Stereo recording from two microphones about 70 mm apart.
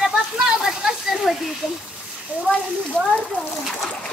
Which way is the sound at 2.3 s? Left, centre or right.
Right.